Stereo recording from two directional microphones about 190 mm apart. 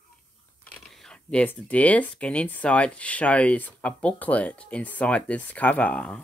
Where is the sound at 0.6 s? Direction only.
5° left (ahead or behind).